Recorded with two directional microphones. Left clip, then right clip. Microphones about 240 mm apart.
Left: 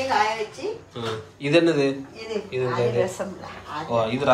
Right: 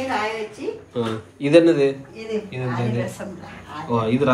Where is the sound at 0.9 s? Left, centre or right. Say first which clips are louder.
Right 4 dB; centre.